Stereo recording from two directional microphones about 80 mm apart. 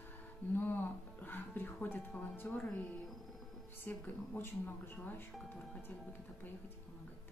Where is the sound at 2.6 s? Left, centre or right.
Centre.